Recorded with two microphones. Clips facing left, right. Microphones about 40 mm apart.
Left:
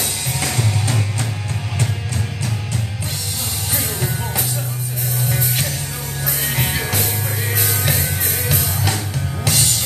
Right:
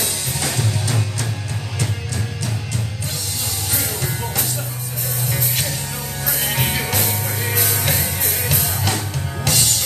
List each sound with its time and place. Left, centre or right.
0.4 s music: left
5.3 s music: centre